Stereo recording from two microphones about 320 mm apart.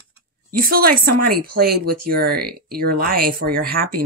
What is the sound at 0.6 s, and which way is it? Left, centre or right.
Speech, right.